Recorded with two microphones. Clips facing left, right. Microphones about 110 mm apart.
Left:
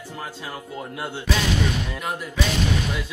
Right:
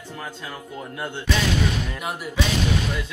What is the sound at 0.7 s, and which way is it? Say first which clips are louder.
Speech: even; 10° left (ahead or behind).